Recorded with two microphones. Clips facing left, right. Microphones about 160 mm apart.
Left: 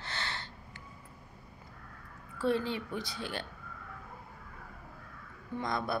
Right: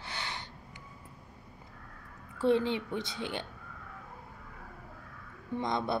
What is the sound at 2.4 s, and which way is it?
A woman's voice, 20° right (ahead or behind).